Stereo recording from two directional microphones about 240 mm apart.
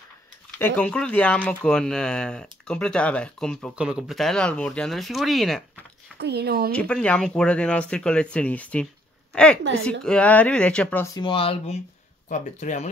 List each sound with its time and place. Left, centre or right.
0.6 s speech: centre
6.1 s speech: right
6.7 s a woman's voice: centre
11.1 s speech: left